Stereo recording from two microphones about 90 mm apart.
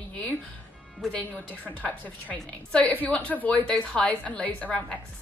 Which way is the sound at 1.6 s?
15° left (ahead or behind).